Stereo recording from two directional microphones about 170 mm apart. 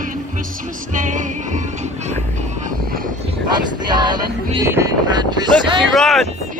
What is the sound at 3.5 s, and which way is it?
Wind noise, 25° right (ahead or behind).